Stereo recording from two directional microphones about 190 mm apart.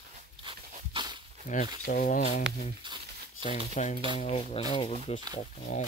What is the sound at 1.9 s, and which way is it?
Speech, 45° left (ahead or behind).